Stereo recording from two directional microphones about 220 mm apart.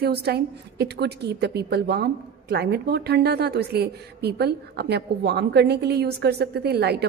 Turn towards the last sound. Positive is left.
turn(degrees=-45)  # may be behind; listen again after turning